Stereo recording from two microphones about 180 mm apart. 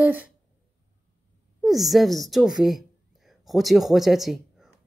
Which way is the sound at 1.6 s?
Centre (ahead or behind).